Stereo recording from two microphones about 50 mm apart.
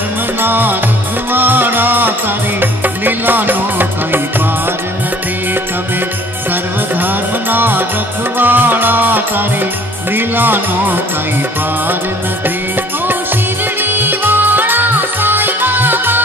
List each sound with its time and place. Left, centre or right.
0.4 s music: right
7.5 s music: right
14.0 s music: right